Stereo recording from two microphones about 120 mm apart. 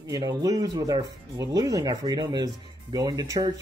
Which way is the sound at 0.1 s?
30° right (ahead or behind).